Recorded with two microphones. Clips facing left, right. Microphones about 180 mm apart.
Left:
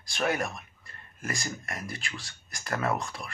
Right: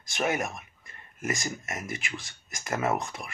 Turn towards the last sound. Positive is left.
turn(degrees=-20)  # may be behind; listen again after turning